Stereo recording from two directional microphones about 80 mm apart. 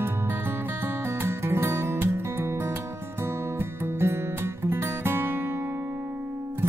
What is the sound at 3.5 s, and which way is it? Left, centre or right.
Music, right.